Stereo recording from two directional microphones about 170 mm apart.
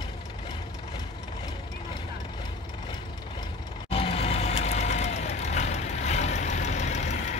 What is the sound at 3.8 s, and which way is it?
Vehicle, 35° left (ahead or behind).